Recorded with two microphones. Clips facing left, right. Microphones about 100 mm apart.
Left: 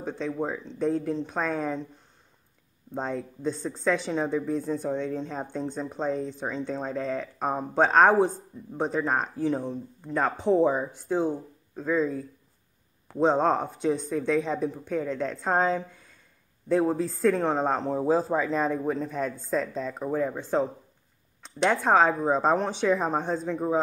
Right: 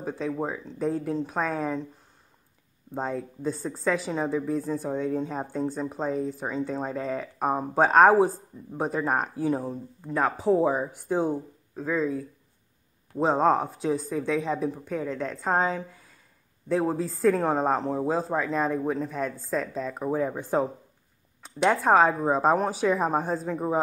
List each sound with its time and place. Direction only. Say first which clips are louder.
0.0 s speech: even; 5° right (ahead or behind)
2.9 s speech: right 1 dB; 5° right (ahead or behind)